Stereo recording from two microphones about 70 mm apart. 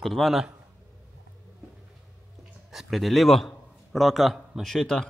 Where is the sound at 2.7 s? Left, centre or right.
Centre.